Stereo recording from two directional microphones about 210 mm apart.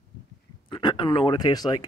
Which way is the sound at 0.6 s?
20° left (ahead or behind).